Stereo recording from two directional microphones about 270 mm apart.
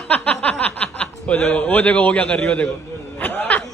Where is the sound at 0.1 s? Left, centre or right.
Centre.